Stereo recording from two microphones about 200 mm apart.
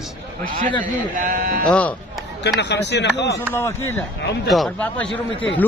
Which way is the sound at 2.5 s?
60° left (ahead or behind).